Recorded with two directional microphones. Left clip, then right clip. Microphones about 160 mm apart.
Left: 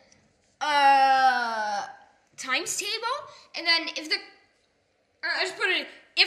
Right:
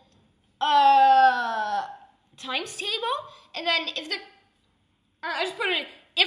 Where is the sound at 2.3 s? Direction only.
5° right (ahead or behind); by 4.2 s 25° right (ahead or behind).